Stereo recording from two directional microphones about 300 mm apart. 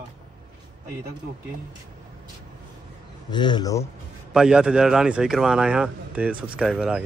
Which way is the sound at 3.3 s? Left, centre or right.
Centre.